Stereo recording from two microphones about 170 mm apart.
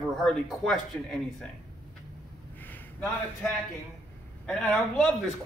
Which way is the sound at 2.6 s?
10° left (ahead or behind).